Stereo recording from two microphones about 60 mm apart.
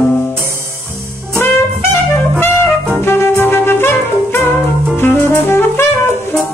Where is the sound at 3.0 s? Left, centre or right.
Left.